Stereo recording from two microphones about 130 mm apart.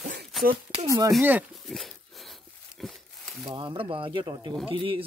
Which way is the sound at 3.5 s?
35° right (ahead or behind).